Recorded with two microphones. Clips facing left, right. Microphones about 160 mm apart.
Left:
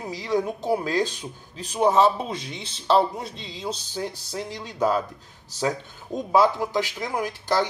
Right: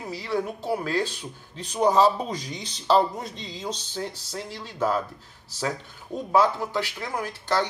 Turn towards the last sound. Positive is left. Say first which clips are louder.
# left 2 dB
turn(degrees=15)  # may be behind; listen again after turning